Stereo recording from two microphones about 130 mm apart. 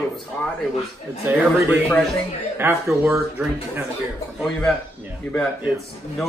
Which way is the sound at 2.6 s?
20° right (ahead or behind).